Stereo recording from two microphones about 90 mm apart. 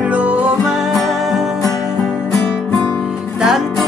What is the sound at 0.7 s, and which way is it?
Music, 5° right (ahead or behind).